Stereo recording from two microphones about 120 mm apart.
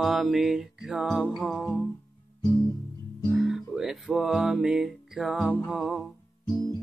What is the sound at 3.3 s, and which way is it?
Music, 5° right (ahead or behind).